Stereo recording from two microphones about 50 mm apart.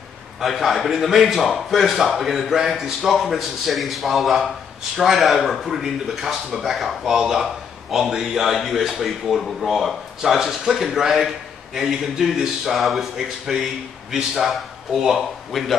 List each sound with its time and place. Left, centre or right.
0.4 s a man's voice: centre